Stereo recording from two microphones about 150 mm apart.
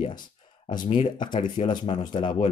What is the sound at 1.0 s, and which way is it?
Speech, 30° left (ahead or behind).